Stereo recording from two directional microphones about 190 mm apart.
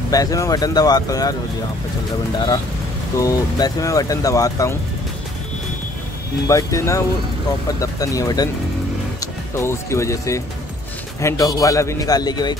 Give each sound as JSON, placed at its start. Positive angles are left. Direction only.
{"t": 0.1, "sound": "speech", "side_deg": 20}
{"t": 3.2, "sound": "speech", "side_deg": 20}
{"t": 6.4, "sound": "speech", "side_deg": 15}